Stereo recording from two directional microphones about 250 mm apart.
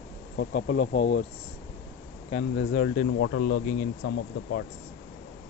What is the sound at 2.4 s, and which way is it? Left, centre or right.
Speech, left.